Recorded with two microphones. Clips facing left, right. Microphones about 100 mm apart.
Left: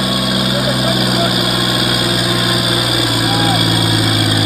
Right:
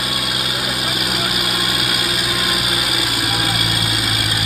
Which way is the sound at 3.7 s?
10° left (ahead or behind).